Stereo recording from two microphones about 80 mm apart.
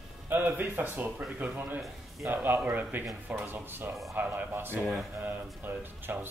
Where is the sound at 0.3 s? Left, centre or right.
Right.